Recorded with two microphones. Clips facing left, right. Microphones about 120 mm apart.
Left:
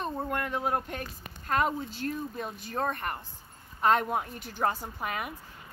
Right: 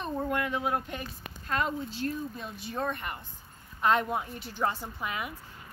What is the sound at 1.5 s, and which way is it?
Speech, 50° left (ahead or behind).